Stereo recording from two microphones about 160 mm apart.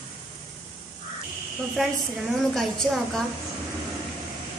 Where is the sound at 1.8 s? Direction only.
Centre (ahead or behind).